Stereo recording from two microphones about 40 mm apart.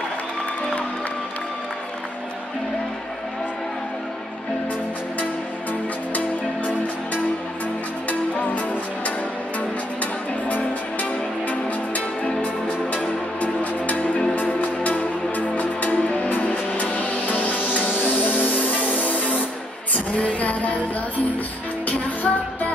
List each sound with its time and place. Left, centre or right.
8.1 s music: left
10.5 s music: left
12.3 s music: left
13.4 s music: left
21.8 s music: left